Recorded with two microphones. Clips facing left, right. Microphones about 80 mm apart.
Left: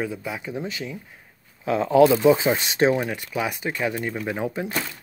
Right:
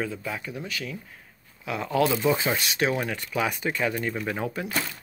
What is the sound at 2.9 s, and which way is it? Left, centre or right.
Speech, centre.